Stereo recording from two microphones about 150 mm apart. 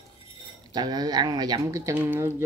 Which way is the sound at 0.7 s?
25° right (ahead or behind).